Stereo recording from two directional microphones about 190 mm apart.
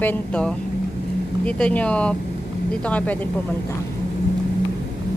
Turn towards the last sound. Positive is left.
turn(degrees=10)  # may be behind; listen again after turning